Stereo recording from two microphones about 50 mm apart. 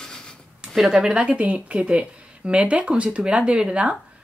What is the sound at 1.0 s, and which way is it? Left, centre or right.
Speech, centre.